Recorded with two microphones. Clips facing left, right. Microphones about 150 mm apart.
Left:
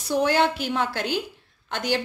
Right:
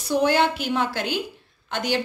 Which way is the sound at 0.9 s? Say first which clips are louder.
Even; 35° left (ahead or behind).